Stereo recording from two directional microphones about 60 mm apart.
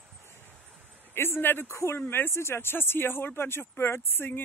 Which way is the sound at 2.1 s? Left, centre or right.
Left.